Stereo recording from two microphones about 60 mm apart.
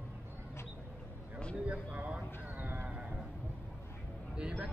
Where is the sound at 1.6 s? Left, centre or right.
Right.